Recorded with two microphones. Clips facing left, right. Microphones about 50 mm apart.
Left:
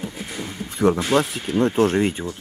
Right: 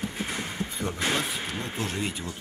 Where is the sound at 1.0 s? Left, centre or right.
Left.